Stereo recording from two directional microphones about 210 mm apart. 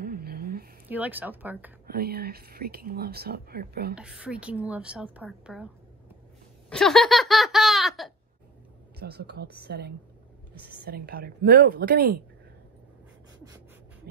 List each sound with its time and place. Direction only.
0.0 s a sound: 45° right (ahead or behind)
0.8 s speech: 10° right (ahead or behind)
1.9 s speech: 45° right (ahead or behind)
3.9 s a woman's voice: 5° right (ahead or behind)
6.7 s laughter: centre (ahead or behind)
9.0 s speech: 50° right (ahead or behind)